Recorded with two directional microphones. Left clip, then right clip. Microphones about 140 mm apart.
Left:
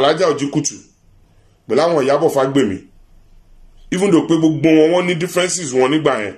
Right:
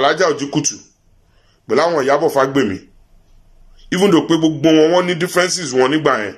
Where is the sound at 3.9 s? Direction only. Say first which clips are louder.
Right 1 dB; 20° left (ahead or behind).